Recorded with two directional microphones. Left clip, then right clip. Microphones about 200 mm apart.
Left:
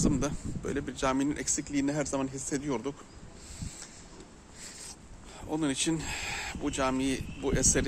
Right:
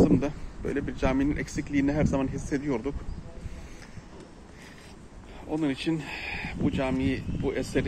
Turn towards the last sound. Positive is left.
turn(degrees=25)  # may be behind; listen again after turning